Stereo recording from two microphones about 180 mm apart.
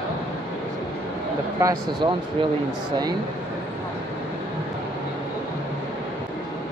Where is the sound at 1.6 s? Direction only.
20° right (ahead or behind).